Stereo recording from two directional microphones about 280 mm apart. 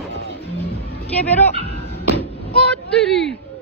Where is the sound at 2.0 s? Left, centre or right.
Left.